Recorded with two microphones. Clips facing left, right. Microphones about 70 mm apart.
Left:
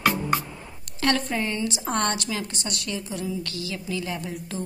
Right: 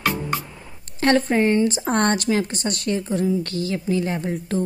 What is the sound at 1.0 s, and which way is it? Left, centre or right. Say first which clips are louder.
A woman's voice: right 7 dB; right.